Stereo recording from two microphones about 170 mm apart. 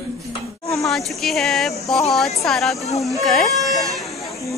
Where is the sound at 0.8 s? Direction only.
Centre (ahead or behind).